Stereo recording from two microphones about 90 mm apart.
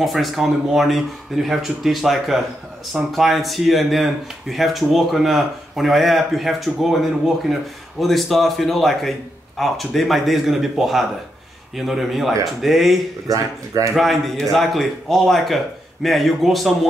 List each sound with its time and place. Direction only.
0.0 s speech: centre (ahead or behind)
13.3 s speech: 40° right (ahead or behind)
13.9 s speech: centre (ahead or behind)